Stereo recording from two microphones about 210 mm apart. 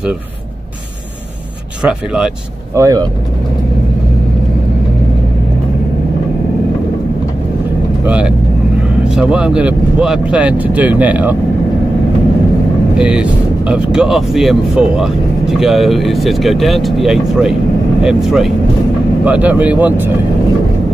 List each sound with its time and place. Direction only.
1.8 s speech: 5° right (ahead or behind)
2.7 s speech: 15° right (ahead or behind)
8.0 s vehicle: 5° right (ahead or behind)
9.1 s speech: 5° right (ahead or behind)
12.9 s speech: 5° right (ahead or behind)